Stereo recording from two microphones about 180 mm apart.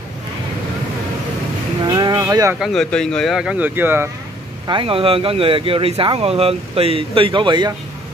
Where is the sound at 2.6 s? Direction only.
Centre (ahead or behind).